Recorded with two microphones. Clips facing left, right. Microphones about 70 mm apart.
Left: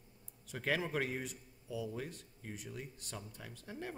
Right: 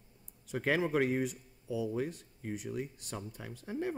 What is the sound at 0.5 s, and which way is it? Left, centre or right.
A man's voice, right.